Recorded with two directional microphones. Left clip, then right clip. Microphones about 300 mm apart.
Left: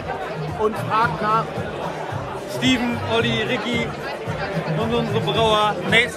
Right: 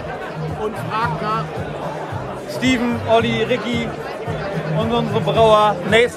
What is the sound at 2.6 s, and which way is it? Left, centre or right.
A man's voice, centre.